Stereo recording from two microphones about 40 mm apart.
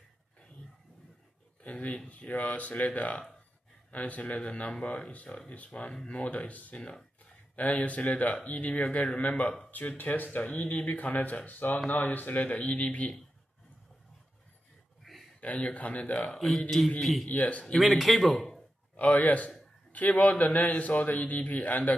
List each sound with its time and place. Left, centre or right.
1.6 s speech: left
4.7 s a man's voice: left
5.5 s speech: left
8.8 s a man's voice: left
9.7 s a man's voice: left
15.1 s a sound: centre
15.4 s speech: left
16.3 s speech: centre
17.0 s speech: centre
17.3 s speech: left
17.7 s speech: centre
18.9 s a man's voice: left